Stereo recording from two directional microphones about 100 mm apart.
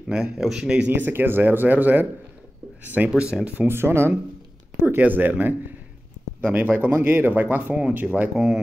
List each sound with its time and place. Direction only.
0.1 s speech: 5° right (ahead or behind)
3.1 s speech: 5° right (ahead or behind)